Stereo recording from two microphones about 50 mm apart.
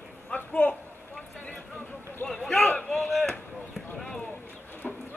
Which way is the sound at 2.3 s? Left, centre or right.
Centre.